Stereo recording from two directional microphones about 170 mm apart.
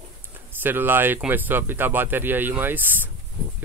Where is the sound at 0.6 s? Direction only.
10° right (ahead or behind).